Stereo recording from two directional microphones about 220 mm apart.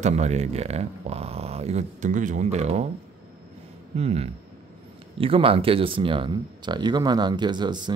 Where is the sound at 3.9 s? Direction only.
30° right (ahead or behind).